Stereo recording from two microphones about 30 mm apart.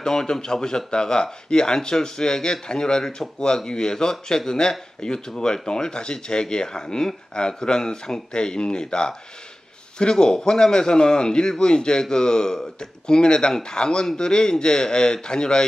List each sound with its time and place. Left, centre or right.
0.0 s speech: left